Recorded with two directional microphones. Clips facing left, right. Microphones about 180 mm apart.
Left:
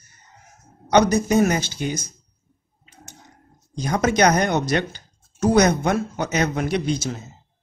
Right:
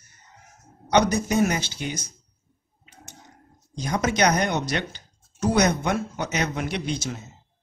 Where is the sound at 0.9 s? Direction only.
45° left (ahead or behind).